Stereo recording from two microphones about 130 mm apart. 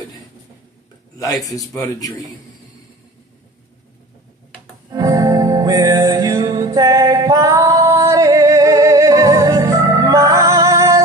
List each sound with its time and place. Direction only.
1.1 s speech: 25° left (ahead or behind)
4.8 s music: 30° right (ahead or behind)